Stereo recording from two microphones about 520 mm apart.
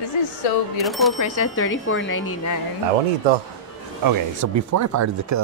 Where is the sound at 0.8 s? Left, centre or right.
Centre.